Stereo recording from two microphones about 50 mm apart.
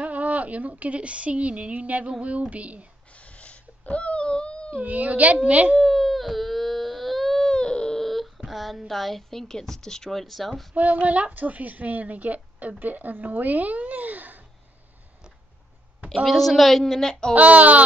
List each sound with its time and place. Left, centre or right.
0.0 s a child's voice: right
3.2 s wail: left
4.7 s a child's voice: right
5.8 s baby cry: centre
7.5 s a sound: centre
8.0 s a sound: centre
8.5 s a woman's voice: centre
10.7 s a child's voice: right
16.3 s a woman's voice: centre
17.3 s speech: right